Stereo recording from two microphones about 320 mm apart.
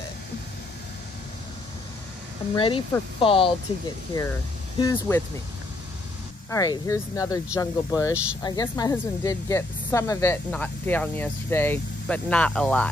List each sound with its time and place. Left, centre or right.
2.5 s speech: centre
6.5 s speech: centre